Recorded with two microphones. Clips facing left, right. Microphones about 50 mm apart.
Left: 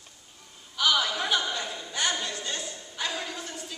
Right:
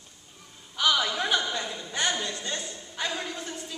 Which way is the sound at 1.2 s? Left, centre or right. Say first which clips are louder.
Right 1 dB; right.